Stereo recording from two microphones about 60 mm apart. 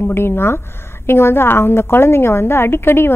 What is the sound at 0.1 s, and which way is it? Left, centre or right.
A woman's voice, left.